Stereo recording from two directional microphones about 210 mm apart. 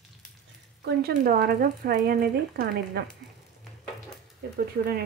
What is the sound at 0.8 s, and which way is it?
Speech, 50° right (ahead or behind).